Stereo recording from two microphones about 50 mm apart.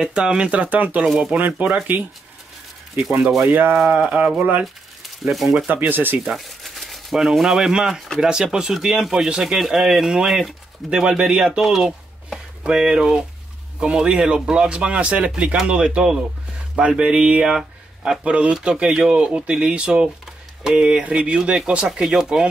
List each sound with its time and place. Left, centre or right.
0.1 s speech: centre
3.4 s speech: right
3.8 s speech: right
5.0 s speech: centre
5.7 s speech: right
6.2 s a sound: centre
7.3 s a man's voice: centre
9.6 s a man's voice: centre
10.9 s a man's voice: centre
17.5 s a sound: centre
18.2 s a man's voice: right